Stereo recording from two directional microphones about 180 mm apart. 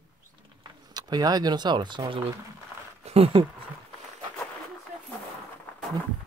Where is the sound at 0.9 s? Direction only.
20° right (ahead or behind).